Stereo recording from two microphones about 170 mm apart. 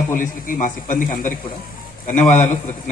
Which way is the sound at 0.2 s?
50° left (ahead or behind).